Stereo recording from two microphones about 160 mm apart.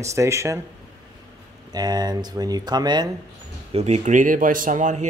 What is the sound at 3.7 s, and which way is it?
Speech, 45° right (ahead or behind).